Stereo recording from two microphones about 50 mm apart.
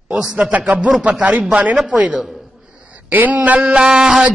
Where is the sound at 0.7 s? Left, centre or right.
Centre.